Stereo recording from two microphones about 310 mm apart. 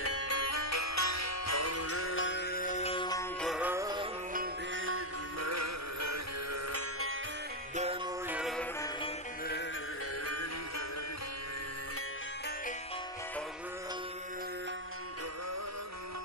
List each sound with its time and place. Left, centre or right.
0.0 s music: left; by 4.1 s centre
4.7 s music: right
6.7 s music: right
7.7 s music: right
8.3 s music: centre